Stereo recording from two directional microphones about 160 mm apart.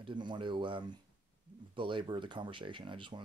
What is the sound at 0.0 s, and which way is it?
Speech, 30° right (ahead or behind).